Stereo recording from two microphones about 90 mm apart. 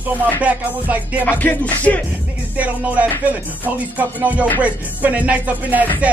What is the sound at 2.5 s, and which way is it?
Speech, 15° right (ahead or behind).